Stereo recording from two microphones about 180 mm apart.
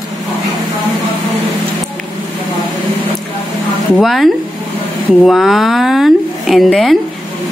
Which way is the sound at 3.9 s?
Centre (ahead or behind).